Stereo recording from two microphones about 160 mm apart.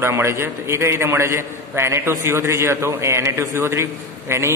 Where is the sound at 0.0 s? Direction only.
15° right (ahead or behind).